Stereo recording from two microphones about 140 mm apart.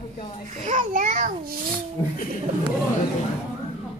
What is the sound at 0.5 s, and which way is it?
A child's voice, 60° right (ahead or behind).